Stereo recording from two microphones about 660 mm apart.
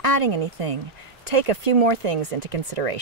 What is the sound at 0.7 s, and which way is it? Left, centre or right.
Speech, right.